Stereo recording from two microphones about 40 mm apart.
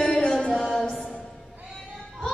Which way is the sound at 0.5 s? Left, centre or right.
Centre.